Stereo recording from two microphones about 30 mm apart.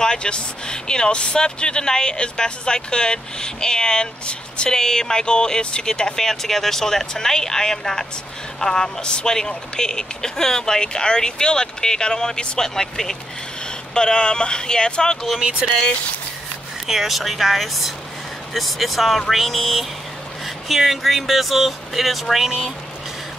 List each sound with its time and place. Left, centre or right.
0.0 s speech: left
4.6 s speech: centre
6.1 s speech: centre
13.9 s speech: left
16.8 s speech: centre
17.2 s speech: centre